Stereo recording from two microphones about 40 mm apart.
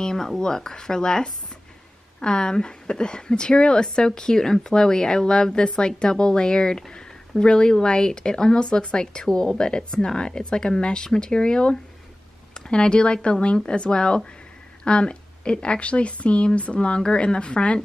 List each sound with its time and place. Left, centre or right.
0.0 s a woman's voice: centre; by 17.7 s left